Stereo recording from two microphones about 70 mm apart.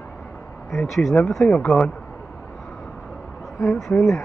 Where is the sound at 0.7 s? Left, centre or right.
Centre.